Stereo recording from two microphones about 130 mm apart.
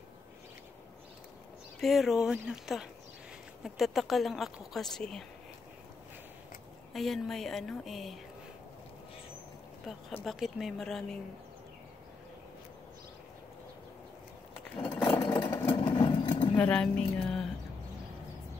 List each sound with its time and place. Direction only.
1.8 s speech: centre (ahead or behind)
6.9 s speech: centre (ahead or behind)
9.9 s speech: centre (ahead or behind)
15.0 s engine: 25° left (ahead or behind)
15.7 s engine: 35° left (ahead or behind)
16.5 s speech: 10° left (ahead or behind)